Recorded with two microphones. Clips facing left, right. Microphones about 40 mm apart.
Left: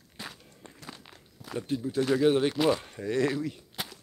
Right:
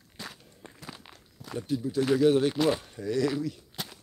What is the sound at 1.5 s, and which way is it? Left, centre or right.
Speech, left.